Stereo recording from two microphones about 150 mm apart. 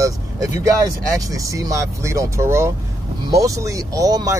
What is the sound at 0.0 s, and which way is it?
Speech, 20° right (ahead or behind).